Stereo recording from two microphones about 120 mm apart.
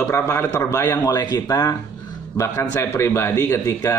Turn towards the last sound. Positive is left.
turn(degrees=20)  # may be behind; listen again after turning